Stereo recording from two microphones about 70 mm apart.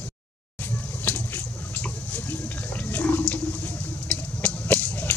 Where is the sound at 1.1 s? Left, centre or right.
Left.